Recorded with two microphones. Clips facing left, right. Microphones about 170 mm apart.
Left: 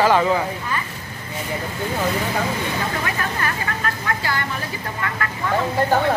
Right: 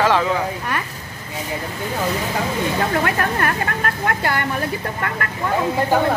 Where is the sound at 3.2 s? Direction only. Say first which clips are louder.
Right 5 dB; 55° right (ahead or behind).